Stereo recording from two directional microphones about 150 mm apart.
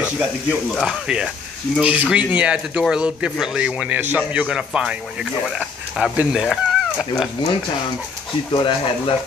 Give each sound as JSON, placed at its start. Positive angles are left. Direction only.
{"t": 0.7, "sound": "a man's voice", "side_deg": -5}
{"t": 8.5, "sound": "speech", "side_deg": 35}